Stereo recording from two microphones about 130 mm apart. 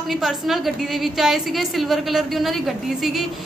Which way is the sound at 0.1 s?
Centre (ahead or behind).